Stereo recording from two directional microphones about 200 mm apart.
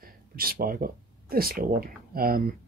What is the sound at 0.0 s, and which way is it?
Speech, 45° right (ahead or behind).